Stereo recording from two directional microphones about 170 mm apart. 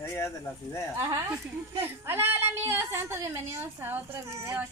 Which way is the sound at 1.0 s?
15° right (ahead or behind).